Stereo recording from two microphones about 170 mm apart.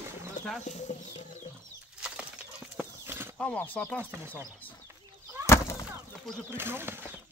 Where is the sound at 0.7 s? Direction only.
45° left (ahead or behind).